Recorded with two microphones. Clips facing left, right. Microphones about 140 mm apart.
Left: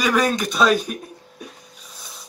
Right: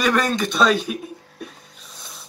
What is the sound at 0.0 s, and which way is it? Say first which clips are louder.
Chuckle: even; centre (ahead or behind).